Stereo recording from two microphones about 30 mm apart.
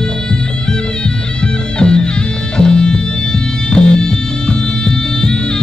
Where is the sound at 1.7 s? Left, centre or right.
Left.